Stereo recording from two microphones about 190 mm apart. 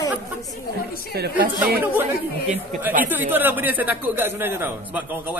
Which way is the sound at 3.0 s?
10° right (ahead or behind).